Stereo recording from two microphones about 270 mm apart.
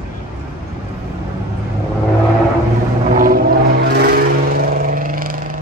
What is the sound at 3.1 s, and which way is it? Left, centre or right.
Vehicle, right.